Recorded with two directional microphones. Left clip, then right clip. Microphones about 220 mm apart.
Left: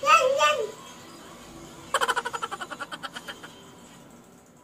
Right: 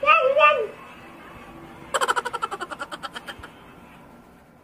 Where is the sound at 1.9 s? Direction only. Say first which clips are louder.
Right 2 dB; centre (ahead or behind).